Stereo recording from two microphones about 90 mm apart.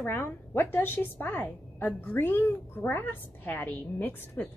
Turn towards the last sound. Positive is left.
turn(degrees=20)  # may be behind; listen again after turning